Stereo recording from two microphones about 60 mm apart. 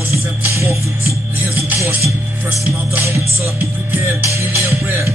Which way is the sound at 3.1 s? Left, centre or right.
Right.